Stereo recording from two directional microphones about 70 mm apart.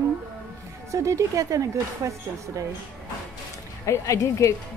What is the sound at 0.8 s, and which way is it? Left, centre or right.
Speech, right.